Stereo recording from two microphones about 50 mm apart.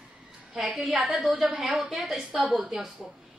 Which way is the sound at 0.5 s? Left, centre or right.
Centre.